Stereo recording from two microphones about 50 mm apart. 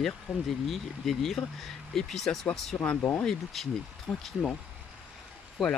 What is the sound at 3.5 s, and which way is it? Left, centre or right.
Speech, centre.